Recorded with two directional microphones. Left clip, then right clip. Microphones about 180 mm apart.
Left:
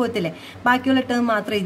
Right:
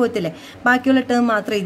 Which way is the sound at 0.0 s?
15° right (ahead or behind).